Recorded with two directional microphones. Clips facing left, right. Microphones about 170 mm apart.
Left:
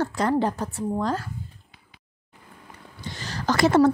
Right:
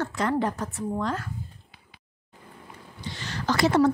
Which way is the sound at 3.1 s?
40° left (ahead or behind).